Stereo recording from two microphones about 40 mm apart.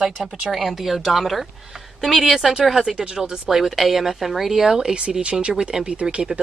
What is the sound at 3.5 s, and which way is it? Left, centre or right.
A woman's voice, centre.